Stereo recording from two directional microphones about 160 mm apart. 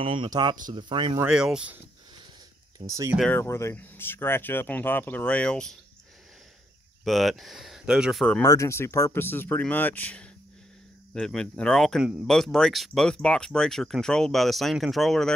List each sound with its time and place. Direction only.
0.0 s speech: 30° right (ahead or behind)
1.2 s speech: 5° right (ahead or behind)
2.9 s speech: 20° right (ahead or behind)
3.2 s speech: 10° left (ahead or behind)
7.1 s speech: centre (ahead or behind)
8.4 s speech: 20° left (ahead or behind); by 15.3 s centre (ahead or behind)